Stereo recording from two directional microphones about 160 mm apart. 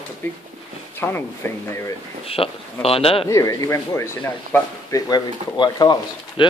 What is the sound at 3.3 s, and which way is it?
Speech, 20° left (ahead or behind).